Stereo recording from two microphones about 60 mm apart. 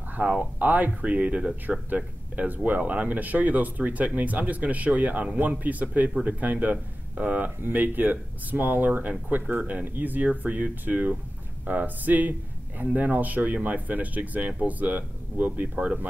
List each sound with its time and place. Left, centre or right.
0.1 s speech: right